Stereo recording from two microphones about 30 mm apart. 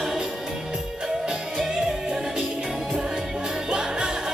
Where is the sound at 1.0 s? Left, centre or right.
Centre.